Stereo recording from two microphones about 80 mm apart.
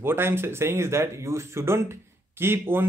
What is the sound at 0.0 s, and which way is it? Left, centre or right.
A man's voice, right.